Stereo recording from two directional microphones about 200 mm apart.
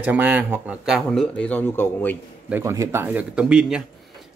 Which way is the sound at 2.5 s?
15° right (ahead or behind).